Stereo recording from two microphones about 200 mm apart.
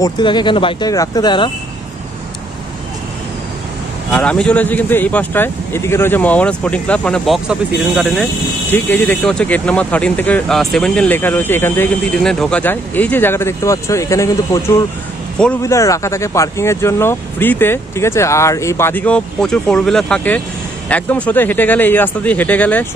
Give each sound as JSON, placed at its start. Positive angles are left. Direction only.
{"t": 0.0, "sound": "speech", "side_deg": 20}
{"t": 4.1, "sound": "speech", "side_deg": 5}
{"t": 8.6, "sound": "speech", "side_deg": 10}